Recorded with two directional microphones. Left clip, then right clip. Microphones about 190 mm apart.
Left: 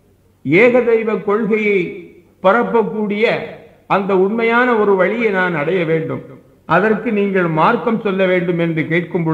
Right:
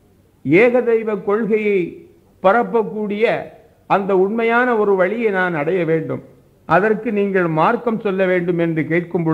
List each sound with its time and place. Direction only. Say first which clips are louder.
0.5 s a man's voice: left 2 dB; 35° right (ahead or behind)